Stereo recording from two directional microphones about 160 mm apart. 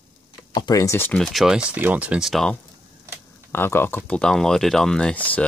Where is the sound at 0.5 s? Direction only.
25° left (ahead or behind).